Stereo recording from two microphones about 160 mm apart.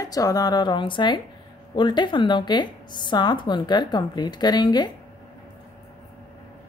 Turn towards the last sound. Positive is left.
turn(degrees=25)  # may be behind; listen again after turning